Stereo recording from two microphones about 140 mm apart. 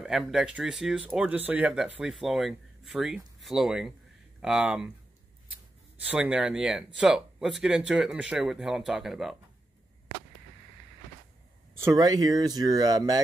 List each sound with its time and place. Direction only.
0.0 s speech: 5° right (ahead or behind)
6.0 s speech: 10° right (ahead or behind)
11.7 s speech: 20° right (ahead or behind)